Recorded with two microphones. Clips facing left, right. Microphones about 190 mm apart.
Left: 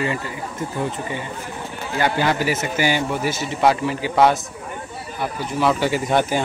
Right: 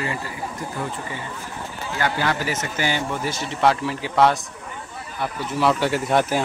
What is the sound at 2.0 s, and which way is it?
A man's voice, 20° left (ahead or behind).